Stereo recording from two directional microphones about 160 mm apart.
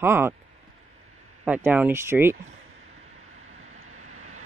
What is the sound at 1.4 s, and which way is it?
Speech, 10° right (ahead or behind).